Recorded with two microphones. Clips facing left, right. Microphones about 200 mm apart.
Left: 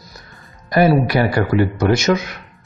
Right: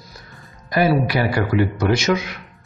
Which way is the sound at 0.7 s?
45° left (ahead or behind).